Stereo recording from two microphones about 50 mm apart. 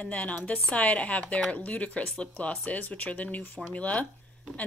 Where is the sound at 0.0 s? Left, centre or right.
Left.